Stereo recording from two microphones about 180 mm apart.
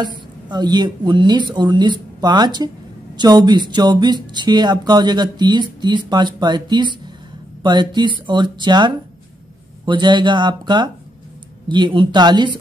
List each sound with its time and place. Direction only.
0.0 s speech: 25° right (ahead or behind)